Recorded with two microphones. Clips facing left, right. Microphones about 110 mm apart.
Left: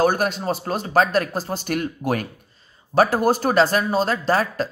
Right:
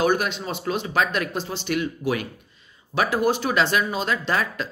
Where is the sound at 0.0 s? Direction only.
40° left (ahead or behind).